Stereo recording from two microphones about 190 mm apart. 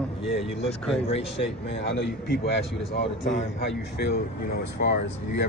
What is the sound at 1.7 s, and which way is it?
A man's voice, 65° left (ahead or behind).